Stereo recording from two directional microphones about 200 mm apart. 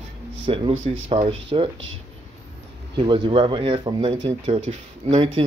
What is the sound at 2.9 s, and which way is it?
Speech, 25° right (ahead or behind).